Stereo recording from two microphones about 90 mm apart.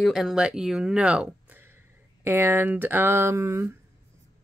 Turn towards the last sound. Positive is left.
turn(degrees=-25)  # may be behind; listen again after turning